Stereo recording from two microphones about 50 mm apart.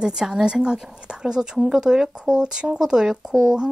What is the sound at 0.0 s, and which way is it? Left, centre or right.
A woman's voice, centre.